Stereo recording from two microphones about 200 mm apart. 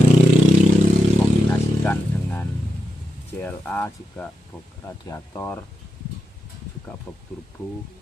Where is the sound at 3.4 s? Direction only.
10° left (ahead or behind).